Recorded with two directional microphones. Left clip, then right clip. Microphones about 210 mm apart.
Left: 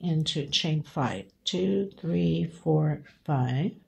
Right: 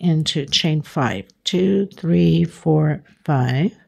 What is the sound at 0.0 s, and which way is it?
Speech, 55° right (ahead or behind).